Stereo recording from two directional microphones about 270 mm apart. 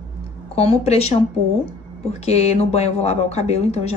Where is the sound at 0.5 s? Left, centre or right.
Left.